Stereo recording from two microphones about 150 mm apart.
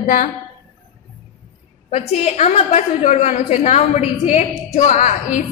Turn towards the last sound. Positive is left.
turn(degrees=55)  # may be behind; listen again after turning